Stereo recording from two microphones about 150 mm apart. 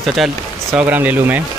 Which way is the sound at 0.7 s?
10° right (ahead or behind).